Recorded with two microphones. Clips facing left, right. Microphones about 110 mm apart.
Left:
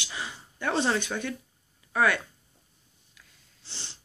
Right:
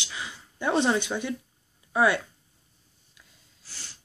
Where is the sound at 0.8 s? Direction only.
20° right (ahead or behind).